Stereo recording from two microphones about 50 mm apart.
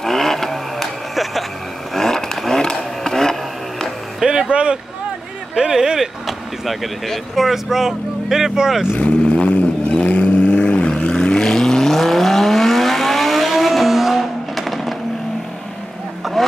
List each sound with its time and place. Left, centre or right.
0.0 s vehicle: centre
2.6 s a sound: centre
4.2 s vehicle: centre
5.6 s a sound: centre
6.2 s speech: centre
9.0 s vehicle: left; by 15.0 s centre